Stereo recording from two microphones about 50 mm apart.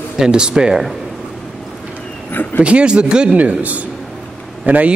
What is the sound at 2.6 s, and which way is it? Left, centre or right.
Speech, right.